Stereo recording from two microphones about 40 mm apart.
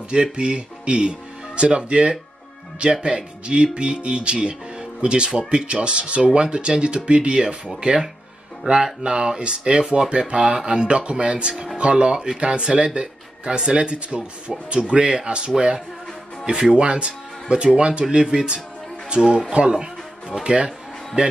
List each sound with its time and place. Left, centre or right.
0.1 s speech: right
8.6 s speech: right
9.0 s speech: centre
15.5 s speech: centre
16.7 s speech: right